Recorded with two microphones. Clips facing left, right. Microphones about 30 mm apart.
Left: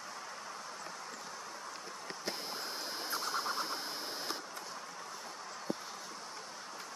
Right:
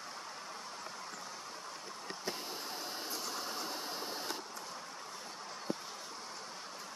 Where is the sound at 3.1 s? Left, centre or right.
Left.